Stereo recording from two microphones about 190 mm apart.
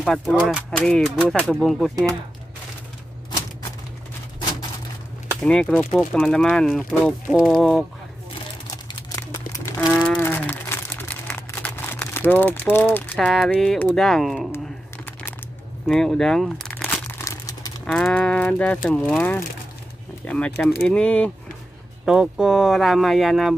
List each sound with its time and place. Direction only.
0.0 s speech: centre (ahead or behind)
5.4 s speech: 5° left (ahead or behind)
8.6 s a sound: 20° left (ahead or behind)
9.7 s a sound: 5° left (ahead or behind)
15.9 s speech: 5° left (ahead or behind)
17.1 s crumpling: 15° left (ahead or behind)
17.8 s speech: 5° left (ahead or behind)